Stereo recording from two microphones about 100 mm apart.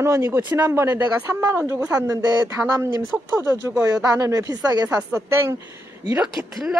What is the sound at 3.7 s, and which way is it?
Speech, 30° right (ahead or behind).